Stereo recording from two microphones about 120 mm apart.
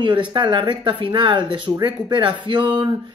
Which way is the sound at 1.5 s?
40° right (ahead or behind).